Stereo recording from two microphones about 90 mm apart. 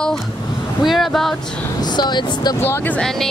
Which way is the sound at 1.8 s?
55° left (ahead or behind).